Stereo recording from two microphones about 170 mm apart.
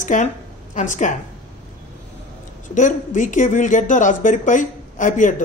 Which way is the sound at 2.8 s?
50° left (ahead or behind).